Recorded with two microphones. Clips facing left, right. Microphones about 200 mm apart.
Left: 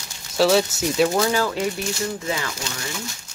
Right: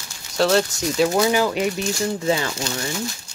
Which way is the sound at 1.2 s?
15° right (ahead or behind).